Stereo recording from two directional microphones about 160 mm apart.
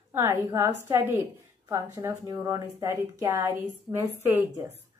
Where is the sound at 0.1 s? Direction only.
15° right (ahead or behind).